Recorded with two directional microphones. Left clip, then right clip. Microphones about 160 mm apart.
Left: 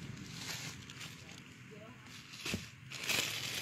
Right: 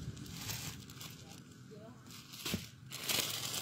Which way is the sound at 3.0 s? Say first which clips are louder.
Left 1 dB; centre (ahead or behind).